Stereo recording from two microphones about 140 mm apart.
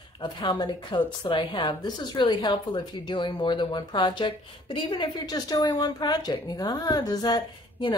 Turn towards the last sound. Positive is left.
turn(degrees=30)  # may be behind; listen again after turning